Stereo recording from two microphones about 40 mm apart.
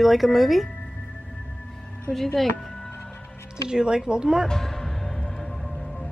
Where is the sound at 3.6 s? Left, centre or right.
Centre.